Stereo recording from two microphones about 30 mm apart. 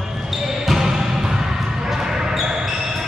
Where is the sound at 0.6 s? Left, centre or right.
Centre.